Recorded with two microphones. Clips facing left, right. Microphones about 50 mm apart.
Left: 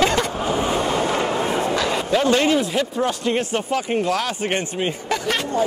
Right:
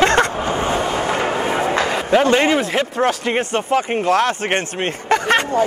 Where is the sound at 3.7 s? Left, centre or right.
Right.